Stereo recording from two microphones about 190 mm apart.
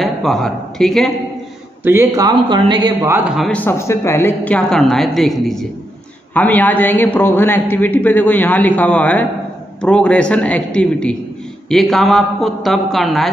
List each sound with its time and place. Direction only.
0.0 s a man's voice: centre (ahead or behind)
1.9 s a man's voice: 15° right (ahead or behind)
3.1 s a woman's voice: 5° right (ahead or behind)